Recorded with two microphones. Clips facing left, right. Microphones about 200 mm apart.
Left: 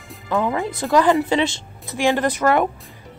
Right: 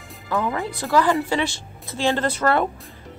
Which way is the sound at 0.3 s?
20° left (ahead or behind).